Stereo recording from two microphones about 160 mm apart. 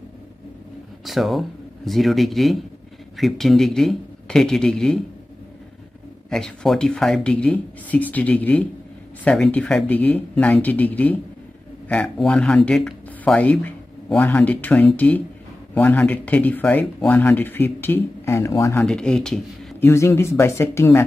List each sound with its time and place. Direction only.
1.0 s speech: centre (ahead or behind)
6.3 s speech: 5° left (ahead or behind)
18.9 s speech: 5° left (ahead or behind)
19.8 s speech: 15° left (ahead or behind)